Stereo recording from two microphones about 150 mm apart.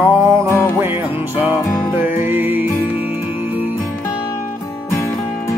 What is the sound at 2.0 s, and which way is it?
Music, 15° right (ahead or behind).